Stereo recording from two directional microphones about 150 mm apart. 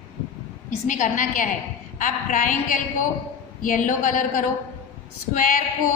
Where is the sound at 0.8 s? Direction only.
55° left (ahead or behind).